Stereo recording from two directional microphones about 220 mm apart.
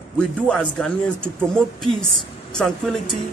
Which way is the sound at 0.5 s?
5° left (ahead or behind).